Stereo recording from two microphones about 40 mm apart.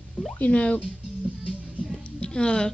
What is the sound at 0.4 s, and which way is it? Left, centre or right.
Speech, left.